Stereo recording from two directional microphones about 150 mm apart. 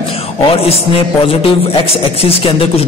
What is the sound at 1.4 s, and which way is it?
A man's voice, 35° left (ahead or behind).